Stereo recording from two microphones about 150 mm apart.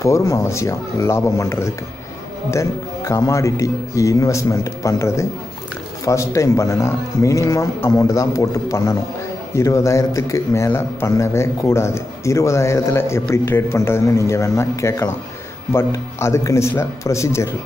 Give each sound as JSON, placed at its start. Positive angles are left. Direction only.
{"t": 0.0, "sound": "speech", "side_deg": 20}